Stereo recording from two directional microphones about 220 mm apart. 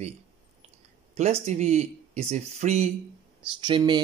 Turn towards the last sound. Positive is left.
turn(degrees=-20)  # may be behind; listen again after turning